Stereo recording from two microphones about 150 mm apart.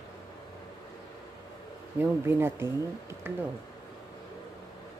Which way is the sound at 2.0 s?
15° right (ahead or behind).